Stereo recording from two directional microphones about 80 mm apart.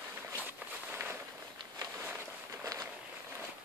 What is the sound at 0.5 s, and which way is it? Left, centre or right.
Walk, right.